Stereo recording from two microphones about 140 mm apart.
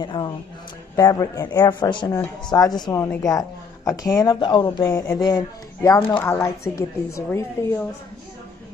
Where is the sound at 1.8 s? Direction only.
35° left (ahead or behind); by 7.8 s 20° left (ahead or behind).